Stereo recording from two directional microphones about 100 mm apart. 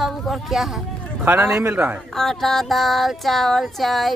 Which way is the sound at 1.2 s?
20° right (ahead or behind).